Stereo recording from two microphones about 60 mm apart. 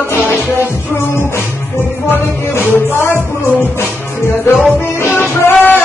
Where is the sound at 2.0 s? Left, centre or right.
Left.